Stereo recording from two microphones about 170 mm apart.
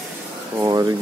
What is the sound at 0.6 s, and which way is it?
Speech, 25° right (ahead or behind).